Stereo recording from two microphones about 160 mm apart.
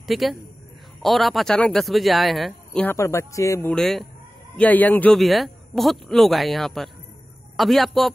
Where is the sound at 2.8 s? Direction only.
15° left (ahead or behind).